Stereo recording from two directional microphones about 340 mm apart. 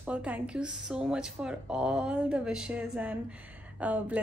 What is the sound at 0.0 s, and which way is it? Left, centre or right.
Speech, centre.